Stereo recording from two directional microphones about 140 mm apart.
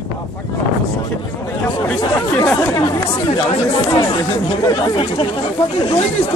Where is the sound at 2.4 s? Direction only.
20° left (ahead or behind).